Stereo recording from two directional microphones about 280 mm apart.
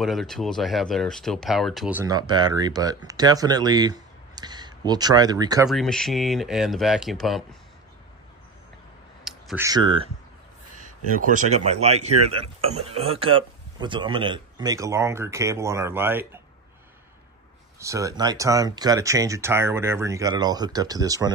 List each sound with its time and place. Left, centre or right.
0.0 s speech: centre
5.7 s speech: centre
9.2 s clicking: centre
9.7 s speech: centre
11.1 s speech: right; by 16.3 s centre
17.7 s speech: centre